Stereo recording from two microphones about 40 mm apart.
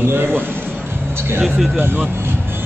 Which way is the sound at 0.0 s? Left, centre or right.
Right.